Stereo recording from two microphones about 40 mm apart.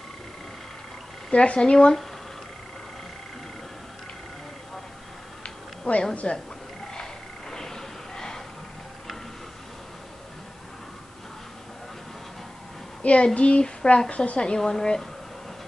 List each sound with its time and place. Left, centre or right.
1.3 s a woman's voice: left
5.4 s a sound: left
6.2 s a woman's voice: left
7.5 s a sound: centre
13.0 s a woman's voice: left
14.6 s a woman's voice: centre